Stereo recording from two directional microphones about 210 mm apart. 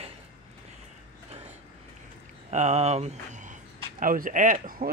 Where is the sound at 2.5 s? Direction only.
35° right (ahead or behind).